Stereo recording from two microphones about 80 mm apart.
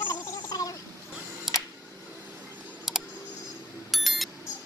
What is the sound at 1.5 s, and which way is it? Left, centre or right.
Camera, centre.